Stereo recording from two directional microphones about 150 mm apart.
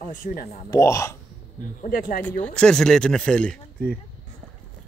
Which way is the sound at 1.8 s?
70° left (ahead or behind).